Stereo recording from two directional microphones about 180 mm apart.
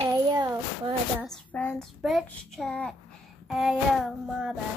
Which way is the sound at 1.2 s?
5° left (ahead or behind).